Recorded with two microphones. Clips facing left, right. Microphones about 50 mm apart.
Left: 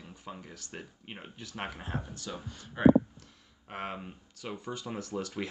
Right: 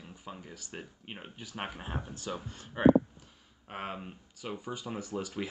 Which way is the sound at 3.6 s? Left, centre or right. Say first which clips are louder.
Left 1 dB; centre.